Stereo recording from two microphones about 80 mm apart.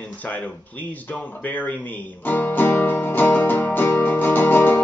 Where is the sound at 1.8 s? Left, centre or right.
Left.